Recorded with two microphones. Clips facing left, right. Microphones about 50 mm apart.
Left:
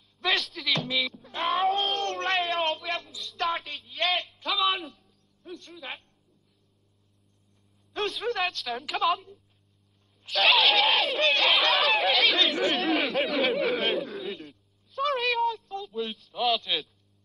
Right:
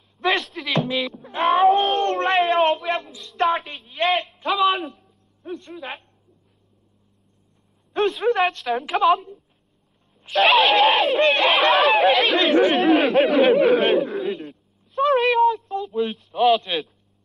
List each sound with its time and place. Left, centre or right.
0.2 s a sound: centre
0.7 s music: right
1.1 s speech: right
2.0 s a sound: right
2.9 s child singing: right
3.5 s a man's voice: centre
4.6 s speech: centre
5.0 s music: right
7.9 s speech: centre
10.3 s speech: centre
14.5 s a sound: right
16.1 s speech: centre